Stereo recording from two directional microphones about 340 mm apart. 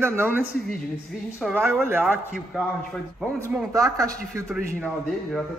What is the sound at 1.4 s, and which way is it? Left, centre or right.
A man's voice, centre.